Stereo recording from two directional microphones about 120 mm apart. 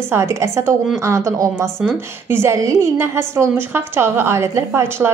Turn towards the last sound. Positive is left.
turn(degrees=-25)  # may be behind; listen again after turning